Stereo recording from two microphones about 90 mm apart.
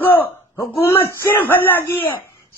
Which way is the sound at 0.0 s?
25° left (ahead or behind).